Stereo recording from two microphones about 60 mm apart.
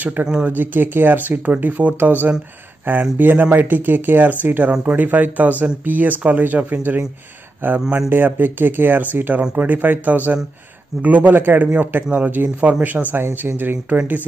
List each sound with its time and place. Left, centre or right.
0.0 s speech: right
8.1 s speech: right
13.1 s speech: right